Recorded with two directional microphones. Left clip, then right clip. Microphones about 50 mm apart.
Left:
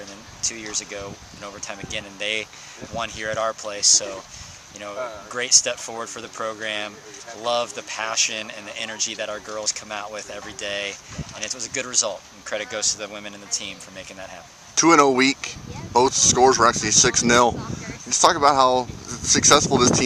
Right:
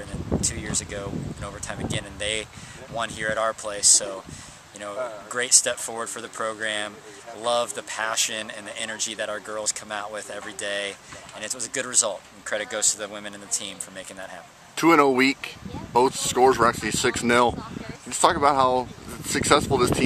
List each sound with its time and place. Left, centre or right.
0.7 s speech: centre
5.3 s speech: centre
14.8 s speech: left